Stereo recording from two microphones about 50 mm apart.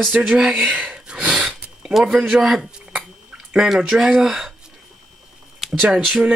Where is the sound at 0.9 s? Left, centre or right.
Centre.